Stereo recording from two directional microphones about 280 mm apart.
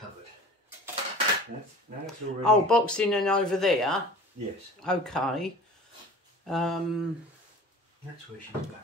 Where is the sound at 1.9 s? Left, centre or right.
Right.